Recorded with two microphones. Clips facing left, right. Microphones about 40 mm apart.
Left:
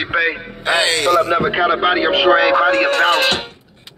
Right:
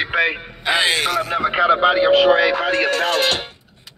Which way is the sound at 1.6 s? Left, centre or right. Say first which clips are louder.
Right 5 dB; left.